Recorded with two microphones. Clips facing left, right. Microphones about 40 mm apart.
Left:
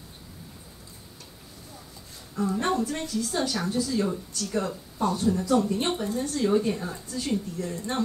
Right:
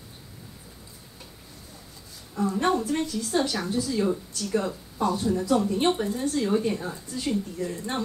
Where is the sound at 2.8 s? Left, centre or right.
Right; by 4.7 s centre.